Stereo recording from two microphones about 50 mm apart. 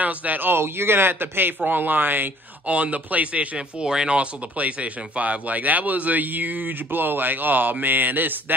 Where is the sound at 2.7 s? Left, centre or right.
Right.